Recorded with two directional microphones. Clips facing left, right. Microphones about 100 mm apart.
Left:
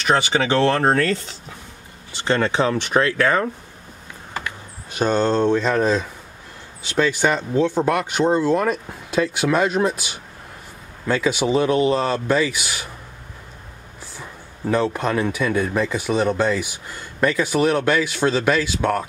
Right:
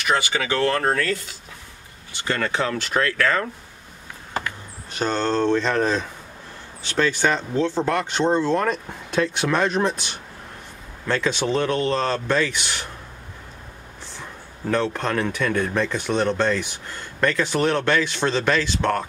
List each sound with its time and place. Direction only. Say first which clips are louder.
0.0 s speech: left 4 dB; 25° left (ahead or behind)
4.9 s speech: left 4 dB; 15° left (ahead or behind)
14.7 s speech: left 2 dB; 10° left (ahead or behind)